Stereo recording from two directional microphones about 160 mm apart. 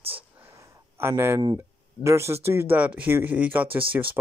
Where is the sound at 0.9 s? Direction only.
15° right (ahead or behind).